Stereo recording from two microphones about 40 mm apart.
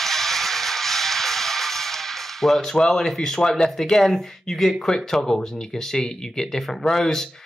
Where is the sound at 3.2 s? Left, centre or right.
Centre.